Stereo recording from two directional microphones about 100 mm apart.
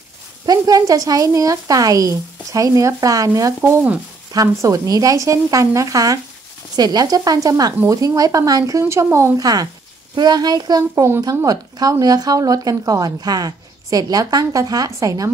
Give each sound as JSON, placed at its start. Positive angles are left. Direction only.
{"t": 0.5, "sound": "speech", "side_deg": -35}
{"t": 9.4, "sound": "a child's voice", "side_deg": -40}